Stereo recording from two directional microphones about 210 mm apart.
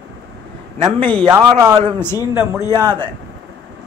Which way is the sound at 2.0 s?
10° left (ahead or behind).